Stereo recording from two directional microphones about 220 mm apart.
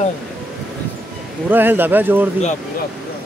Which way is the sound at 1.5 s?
10° right (ahead or behind).